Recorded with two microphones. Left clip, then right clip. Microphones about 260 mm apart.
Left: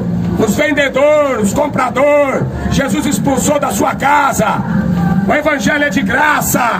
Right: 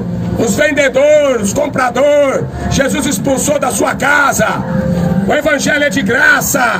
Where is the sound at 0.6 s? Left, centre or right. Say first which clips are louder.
Right 2 dB; right.